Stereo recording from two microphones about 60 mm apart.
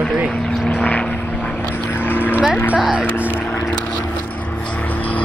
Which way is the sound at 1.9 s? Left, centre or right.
Left.